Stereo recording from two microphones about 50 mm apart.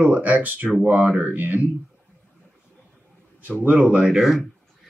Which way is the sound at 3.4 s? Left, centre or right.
Right.